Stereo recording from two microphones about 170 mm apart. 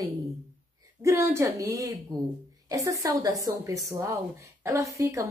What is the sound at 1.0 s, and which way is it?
A woman's voice, 20° right (ahead or behind).